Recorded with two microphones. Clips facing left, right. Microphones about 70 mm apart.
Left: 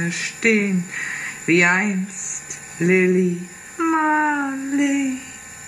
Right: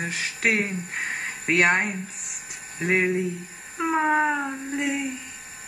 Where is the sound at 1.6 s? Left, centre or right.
Centre.